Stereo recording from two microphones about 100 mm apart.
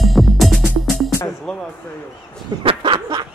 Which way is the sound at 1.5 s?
5° left (ahead or behind).